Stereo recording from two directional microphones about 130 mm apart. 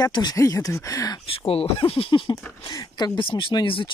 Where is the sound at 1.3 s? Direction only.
45° left (ahead or behind).